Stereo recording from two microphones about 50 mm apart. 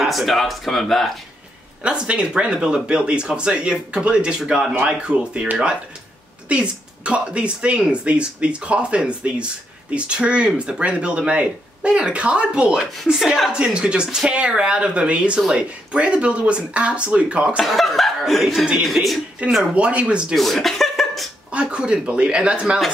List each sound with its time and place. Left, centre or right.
0.0 s speech: centre
1.8 s speech: centre
6.5 s speech: right
13.1 s speech: centre
17.6 s speech: centre
19.7 s speech: right
20.3 s chuckle: centre
21.5 s speech: right